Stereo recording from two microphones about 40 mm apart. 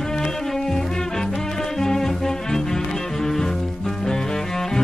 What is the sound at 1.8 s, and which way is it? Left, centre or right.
Music, centre.